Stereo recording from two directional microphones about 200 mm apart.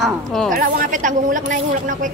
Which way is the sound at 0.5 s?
45° right (ahead or behind).